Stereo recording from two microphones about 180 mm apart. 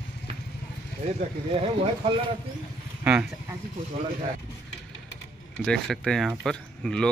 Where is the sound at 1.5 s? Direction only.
30° right (ahead or behind).